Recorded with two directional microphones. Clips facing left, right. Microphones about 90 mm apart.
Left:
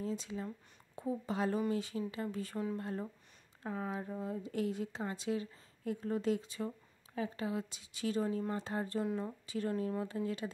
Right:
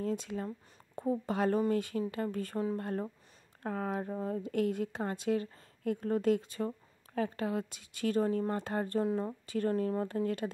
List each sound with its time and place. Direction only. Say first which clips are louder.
0.0 s speech: right 4 dB; 55° right (ahead or behind)
9.0 s a woman's voice: right 5 dB; 30° right (ahead or behind)
9.5 s speech: right 5 dB; 50° right (ahead or behind)